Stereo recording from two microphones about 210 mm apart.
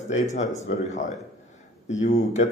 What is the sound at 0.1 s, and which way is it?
Speech, 35° left (ahead or behind).